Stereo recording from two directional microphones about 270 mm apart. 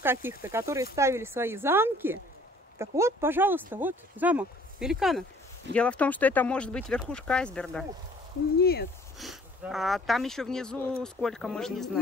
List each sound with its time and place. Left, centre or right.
0.0 s a woman's voice: centre
8.5 s speech: left
9.2 s speech: centre